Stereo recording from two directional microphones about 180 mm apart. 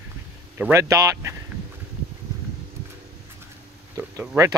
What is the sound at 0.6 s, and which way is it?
Speech, 15° right (ahead or behind).